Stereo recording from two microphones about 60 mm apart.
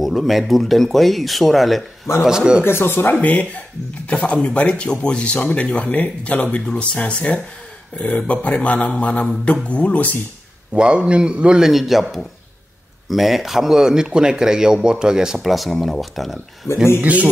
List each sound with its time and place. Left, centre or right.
0.0 s speech: centre
2.2 s a man's voice: centre
2.6 s speech: left
3.2 s speech: left
10.7 s a man's voice: centre
11.7 s a man's voice: centre
15.4 s speech: centre
16.6 s speech: left
17.0 s a man's voice: right